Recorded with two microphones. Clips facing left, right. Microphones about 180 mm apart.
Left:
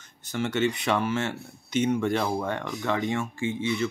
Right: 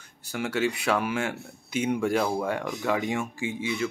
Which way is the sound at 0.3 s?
5° right (ahead or behind).